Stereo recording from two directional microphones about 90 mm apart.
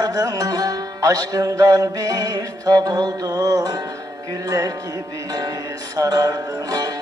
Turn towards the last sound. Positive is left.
turn(degrees=-40)  # may be behind; listen again after turning